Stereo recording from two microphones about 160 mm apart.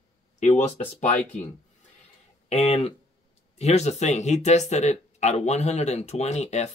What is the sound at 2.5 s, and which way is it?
Speech, 40° left (ahead or behind).